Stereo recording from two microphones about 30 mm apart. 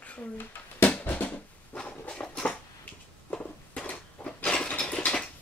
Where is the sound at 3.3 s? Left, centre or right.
Left.